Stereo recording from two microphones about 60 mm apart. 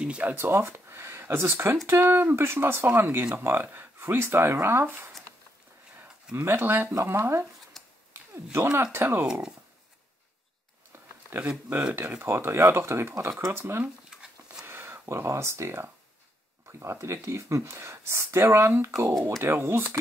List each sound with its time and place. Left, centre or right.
0.2 s speech: right
0.5 s speech: right
0.7 s speech: right
6.3 s speech: right
7.1 s speech: right
7.8 s a sound: centre
8.1 s a sound: right
8.9 s speech: right
11.4 s speech: right
11.9 s speech: right
14.1 s a sound: centre
14.7 s speech: right